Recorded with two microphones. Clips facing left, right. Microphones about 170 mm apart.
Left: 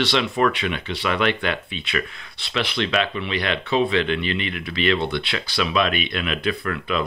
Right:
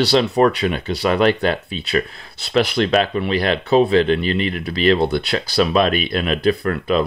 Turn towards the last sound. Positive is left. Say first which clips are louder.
# right 6 dB
turn(degrees=-40)  # may be behind; listen again after turning